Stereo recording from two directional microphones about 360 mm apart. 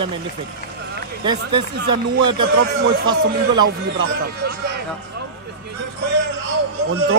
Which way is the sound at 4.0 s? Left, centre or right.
Right.